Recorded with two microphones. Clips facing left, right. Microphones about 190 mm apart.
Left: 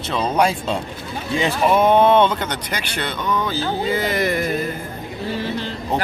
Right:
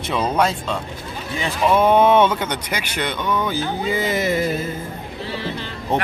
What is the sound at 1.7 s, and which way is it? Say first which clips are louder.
Speech: even; centre (ahead or behind).